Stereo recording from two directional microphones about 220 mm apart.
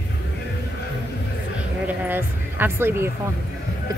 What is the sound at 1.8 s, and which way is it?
Speech, 10° right (ahead or behind).